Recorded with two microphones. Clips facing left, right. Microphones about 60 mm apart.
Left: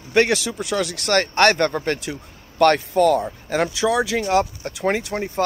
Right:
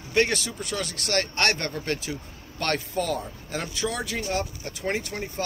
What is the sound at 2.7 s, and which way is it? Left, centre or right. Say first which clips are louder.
Speech: left 9 dB; left.